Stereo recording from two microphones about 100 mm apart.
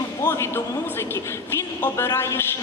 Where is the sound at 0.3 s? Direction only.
25° left (ahead or behind).